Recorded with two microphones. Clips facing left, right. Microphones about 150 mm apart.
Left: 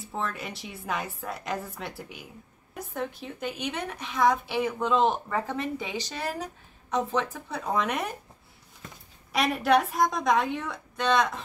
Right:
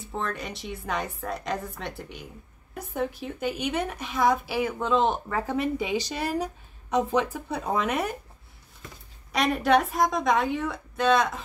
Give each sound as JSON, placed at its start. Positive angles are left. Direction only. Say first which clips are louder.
{"t": 0.1, "sound": "a woman's voice", "louder": "right 1 dB", "side_deg": 5}
{"t": 2.9, "sound": "speech", "louder": "right 4 dB", "side_deg": -5}
{"t": 9.3, "sound": "a woman's voice", "louder": "right 1 dB", "side_deg": 0}